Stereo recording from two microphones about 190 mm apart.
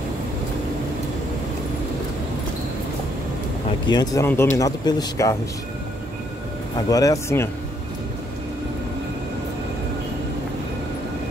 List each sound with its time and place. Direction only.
3.8 s speech: 20° left (ahead or behind)
6.9 s speech: 20° left (ahead or behind)